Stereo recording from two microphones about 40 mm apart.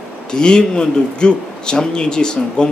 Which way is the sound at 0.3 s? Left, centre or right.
Centre.